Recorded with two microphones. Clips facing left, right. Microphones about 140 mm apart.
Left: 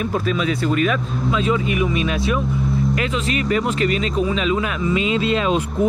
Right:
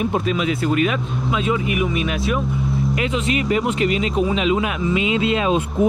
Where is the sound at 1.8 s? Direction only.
15° right (ahead or behind).